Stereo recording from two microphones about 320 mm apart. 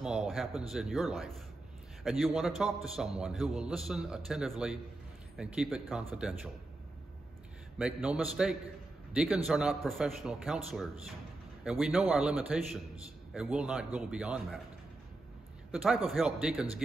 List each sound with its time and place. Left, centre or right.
0.0 s a man's voice: centre
7.8 s a man's voice: centre
15.7 s a man's voice: centre